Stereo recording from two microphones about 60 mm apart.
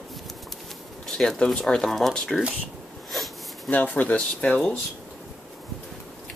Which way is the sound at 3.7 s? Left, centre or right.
Left.